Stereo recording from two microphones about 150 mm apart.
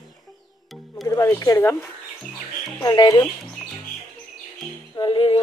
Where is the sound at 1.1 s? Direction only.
20° left (ahead or behind).